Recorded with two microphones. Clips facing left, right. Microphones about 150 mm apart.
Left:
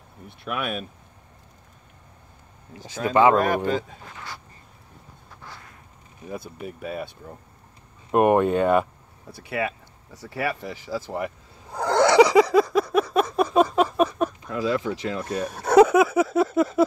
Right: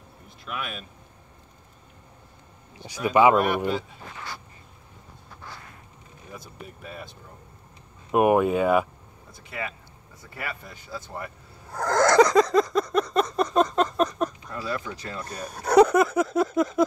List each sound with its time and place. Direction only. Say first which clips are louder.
0.5 s speech: left 6 dB; 55° left (ahead or behind)
3.0 s speech: left 1 dB; 15° right (ahead or behind)
6.3 s speech: left 8 dB; 60° left (ahead or behind)
8.1 s speech: left 1 dB; 5° right (ahead or behind)
9.3 s speech: left 7 dB; 65° left (ahead or behind); by 11.3 s 90° left
11.7 s a sound: left 2 dB; 10° left (ahead or behind)
14.5 s speech: left 7 dB; 90° left
15.4 s speech: left 2 dB; centre (ahead or behind)